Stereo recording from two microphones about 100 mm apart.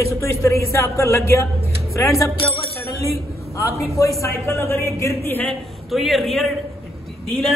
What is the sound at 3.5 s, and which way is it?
Speech, 30° left (ahead or behind).